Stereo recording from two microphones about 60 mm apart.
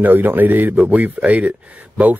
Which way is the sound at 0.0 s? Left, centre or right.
Right.